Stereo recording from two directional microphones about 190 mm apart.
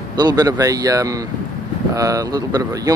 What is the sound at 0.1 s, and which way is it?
Speech, 20° right (ahead or behind).